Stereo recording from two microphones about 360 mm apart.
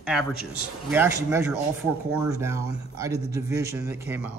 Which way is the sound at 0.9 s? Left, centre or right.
Centre.